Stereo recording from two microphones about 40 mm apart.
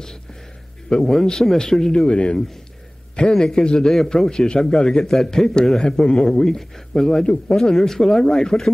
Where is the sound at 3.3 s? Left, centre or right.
Centre.